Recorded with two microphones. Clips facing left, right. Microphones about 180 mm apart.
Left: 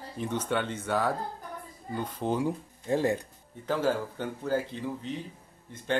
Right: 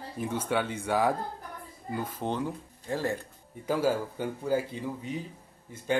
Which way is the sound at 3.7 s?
10° right (ahead or behind).